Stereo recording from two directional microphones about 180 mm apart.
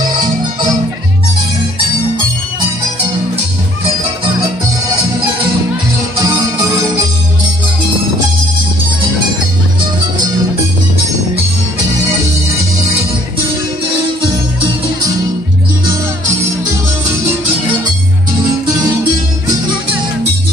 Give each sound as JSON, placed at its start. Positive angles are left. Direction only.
{"t": 6.2, "sound": "music", "side_deg": -15}